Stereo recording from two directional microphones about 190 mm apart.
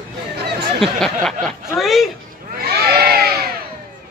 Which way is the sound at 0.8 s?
Centre (ahead or behind).